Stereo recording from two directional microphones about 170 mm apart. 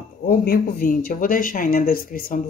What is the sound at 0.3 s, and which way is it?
Speech, 60° left (ahead or behind).